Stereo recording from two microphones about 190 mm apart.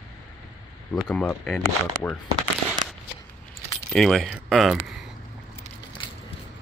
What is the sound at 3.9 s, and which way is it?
Speech, centre (ahead or behind).